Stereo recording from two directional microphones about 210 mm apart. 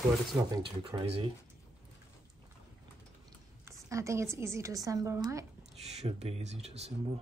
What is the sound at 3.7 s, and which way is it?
A woman's voice, 15° right (ahead or behind).